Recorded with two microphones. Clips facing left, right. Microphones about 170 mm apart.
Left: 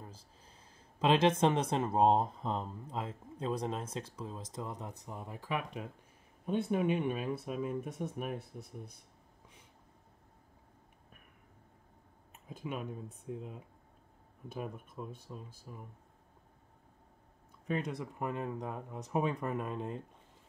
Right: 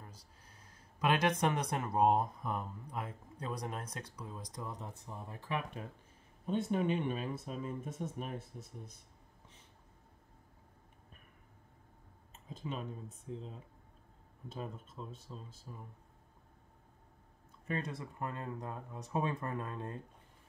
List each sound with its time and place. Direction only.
0.0 s speech: 30° left (ahead or behind)
6.4 s speech: 10° left (ahead or behind)
8.5 s speech: 60° left (ahead or behind)
12.4 s a sound: 10° left (ahead or behind)
13.2 s speech: 10° left (ahead or behind)
17.7 s speech: 20° left (ahead or behind)